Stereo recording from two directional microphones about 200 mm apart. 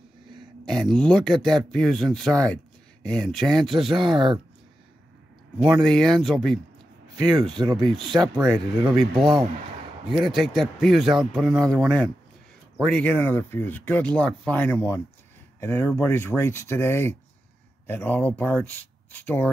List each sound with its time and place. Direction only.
0.7 s speech: centre (ahead or behind)
5.6 s speech: 5° right (ahead or behind)
7.5 s speech: 20° right (ahead or behind)
8.9 s speech: centre (ahead or behind)